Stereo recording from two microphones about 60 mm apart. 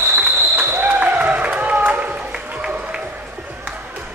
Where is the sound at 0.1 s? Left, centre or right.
Right.